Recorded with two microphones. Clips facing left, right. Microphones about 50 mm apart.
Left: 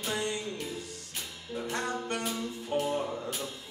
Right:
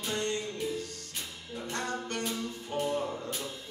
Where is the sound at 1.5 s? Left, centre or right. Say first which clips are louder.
Left 2 dB; centre.